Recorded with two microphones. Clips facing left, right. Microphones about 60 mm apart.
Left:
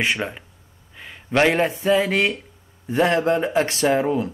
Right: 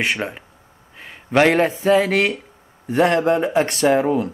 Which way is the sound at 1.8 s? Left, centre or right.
Right.